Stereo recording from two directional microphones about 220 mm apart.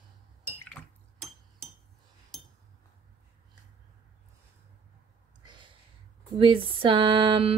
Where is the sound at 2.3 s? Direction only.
Centre (ahead or behind).